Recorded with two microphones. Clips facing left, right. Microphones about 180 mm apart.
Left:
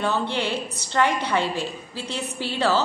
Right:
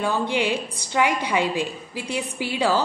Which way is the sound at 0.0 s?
10° right (ahead or behind).